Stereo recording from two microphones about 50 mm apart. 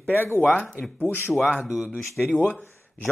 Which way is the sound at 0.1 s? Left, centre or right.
Left.